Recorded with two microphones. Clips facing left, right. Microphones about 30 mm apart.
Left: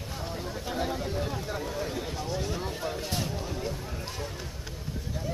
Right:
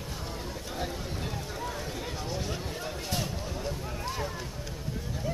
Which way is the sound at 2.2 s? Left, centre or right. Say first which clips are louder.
Left 2 dB; centre.